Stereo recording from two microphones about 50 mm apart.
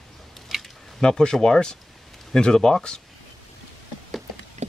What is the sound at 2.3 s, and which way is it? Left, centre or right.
Speech, centre.